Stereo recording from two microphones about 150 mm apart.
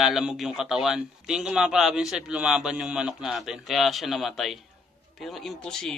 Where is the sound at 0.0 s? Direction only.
5° right (ahead or behind).